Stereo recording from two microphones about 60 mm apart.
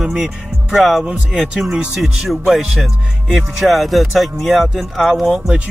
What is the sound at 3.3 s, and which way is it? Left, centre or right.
Music, centre.